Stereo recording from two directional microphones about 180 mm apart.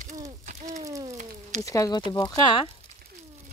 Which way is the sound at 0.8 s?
20° right (ahead or behind).